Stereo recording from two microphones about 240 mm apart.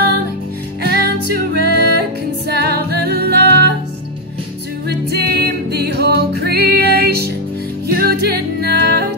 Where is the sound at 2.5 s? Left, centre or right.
Right.